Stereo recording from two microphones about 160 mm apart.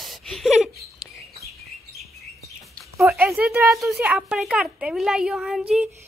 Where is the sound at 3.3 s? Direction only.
5° right (ahead or behind).